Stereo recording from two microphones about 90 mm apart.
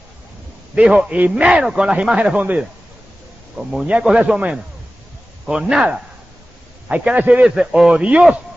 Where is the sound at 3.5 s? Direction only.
5° right (ahead or behind).